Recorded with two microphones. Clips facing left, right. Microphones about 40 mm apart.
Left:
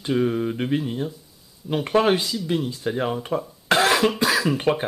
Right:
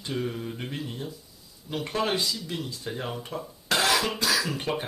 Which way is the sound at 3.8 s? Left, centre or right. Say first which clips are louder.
Left 6 dB; centre.